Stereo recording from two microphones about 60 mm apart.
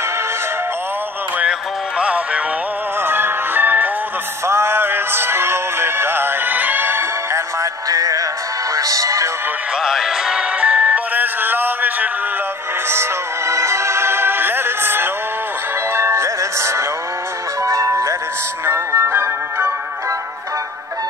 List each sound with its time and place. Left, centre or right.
1.4 s music: centre
3.0 s music: right
4.5 s music: right
7.9 s music: right
8.7 s music: right
9.8 s music: centre
11.1 s music: right
12.9 s music: right
17.6 s music: right
18.7 s music: right